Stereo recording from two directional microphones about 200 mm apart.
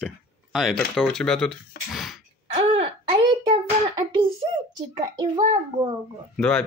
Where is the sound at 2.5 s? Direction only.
30° right (ahead or behind).